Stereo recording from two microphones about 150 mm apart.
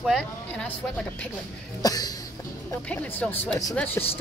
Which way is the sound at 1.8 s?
25° left (ahead or behind).